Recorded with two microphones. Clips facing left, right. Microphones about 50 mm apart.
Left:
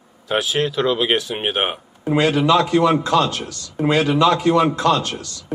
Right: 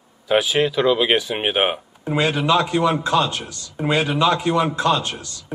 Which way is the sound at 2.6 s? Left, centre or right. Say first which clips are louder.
Left 3 dB; centre.